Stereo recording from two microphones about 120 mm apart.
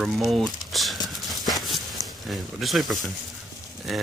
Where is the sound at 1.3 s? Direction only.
Centre (ahead or behind).